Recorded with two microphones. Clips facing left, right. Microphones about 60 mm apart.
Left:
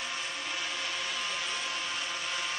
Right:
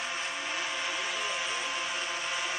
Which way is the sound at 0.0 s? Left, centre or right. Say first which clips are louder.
Right 2 dB; centre.